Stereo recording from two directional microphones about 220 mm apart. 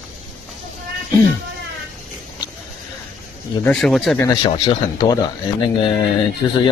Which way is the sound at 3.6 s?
Centre (ahead or behind).